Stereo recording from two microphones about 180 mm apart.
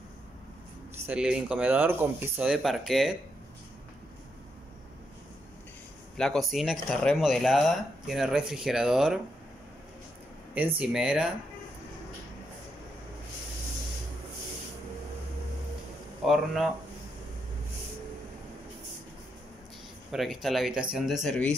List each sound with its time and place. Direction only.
1.0 s speech: 5° right (ahead or behind)
6.1 s speech: 5° left (ahead or behind)
10.8 s speech: 5° right (ahead or behind)
16.3 s speech: centre (ahead or behind)
20.1 s speech: centre (ahead or behind)